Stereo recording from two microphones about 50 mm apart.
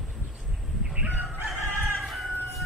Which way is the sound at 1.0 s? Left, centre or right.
Right.